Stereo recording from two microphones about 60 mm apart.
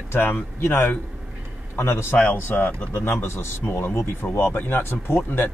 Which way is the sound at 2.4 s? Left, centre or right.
Left.